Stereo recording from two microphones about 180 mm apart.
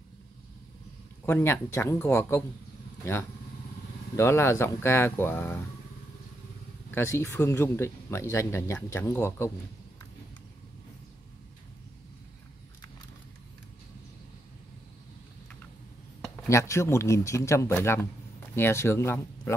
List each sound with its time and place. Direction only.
1.2 s speech: 10° left (ahead or behind)
4.2 s speech: 15° left (ahead or behind)
6.9 s speech: 10° left (ahead or behind)
16.4 s speech: 15° left (ahead or behind)